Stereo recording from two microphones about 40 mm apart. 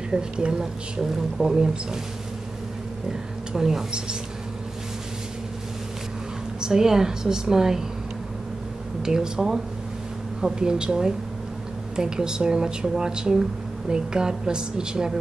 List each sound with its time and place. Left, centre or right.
0.1 s speech: right
3.1 s speech: centre
6.6 s speech: centre
9.0 s speech: centre